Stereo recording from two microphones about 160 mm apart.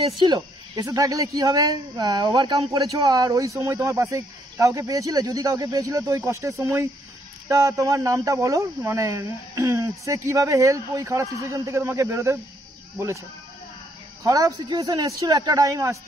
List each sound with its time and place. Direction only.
0.2 s speech: 25° right (ahead or behind)
14.2 s speech: 20° right (ahead or behind)